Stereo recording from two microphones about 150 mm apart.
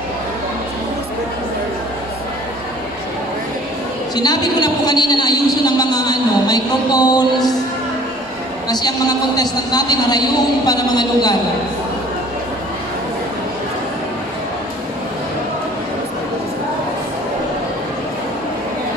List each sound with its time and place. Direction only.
4.1 s a woman's voice: 25° left (ahead or behind)
8.6 s a woman's voice: 25° left (ahead or behind)